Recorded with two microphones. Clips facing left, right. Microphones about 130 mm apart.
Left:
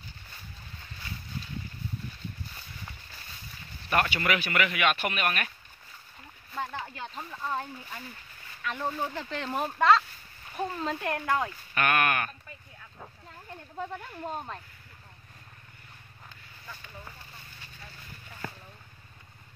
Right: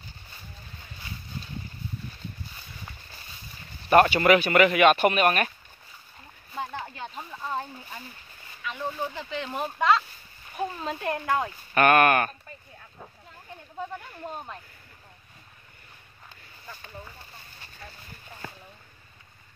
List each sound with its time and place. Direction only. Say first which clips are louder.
3.9 s speech: right 9 dB; 35° right (ahead or behind)
6.5 s a sound: right 1 dB; 15° right (ahead or behind)
7.2 s speech: left 1 dB; 5° right (ahead or behind)
8.6 s speech: even; centre (ahead or behind); by 11.5 s 20° right (ahead or behind)
11.7 s speech: right 8 dB; 45° right (ahead or behind)